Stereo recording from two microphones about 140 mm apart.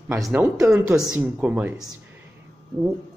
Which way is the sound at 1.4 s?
10° right (ahead or behind).